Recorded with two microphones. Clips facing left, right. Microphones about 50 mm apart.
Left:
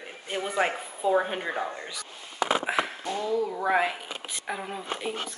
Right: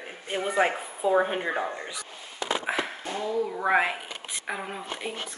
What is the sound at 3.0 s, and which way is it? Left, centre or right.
Speech, centre.